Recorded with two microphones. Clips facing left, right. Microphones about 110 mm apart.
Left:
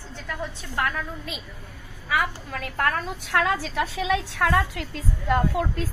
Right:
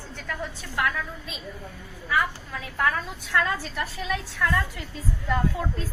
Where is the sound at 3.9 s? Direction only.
90° left; by 5.8 s 75° left (ahead or behind).